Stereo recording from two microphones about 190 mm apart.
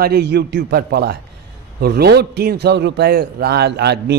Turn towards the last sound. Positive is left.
turn(degrees=-60)  # may be behind; listen again after turning